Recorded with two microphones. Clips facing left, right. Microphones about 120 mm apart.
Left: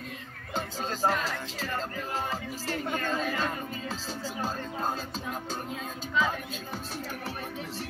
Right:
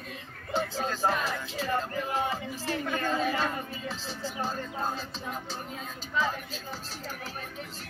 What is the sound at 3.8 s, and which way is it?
Music, 45° left (ahead or behind).